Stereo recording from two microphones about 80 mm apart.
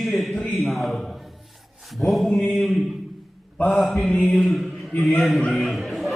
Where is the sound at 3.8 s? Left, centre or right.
Centre.